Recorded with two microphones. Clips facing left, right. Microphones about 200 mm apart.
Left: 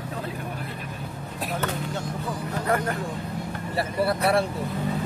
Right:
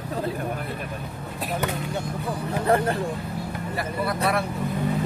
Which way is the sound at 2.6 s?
30° right (ahead or behind).